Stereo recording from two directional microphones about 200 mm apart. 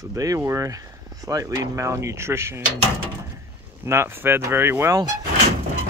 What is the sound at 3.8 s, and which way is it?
Speech, 10° right (ahead or behind).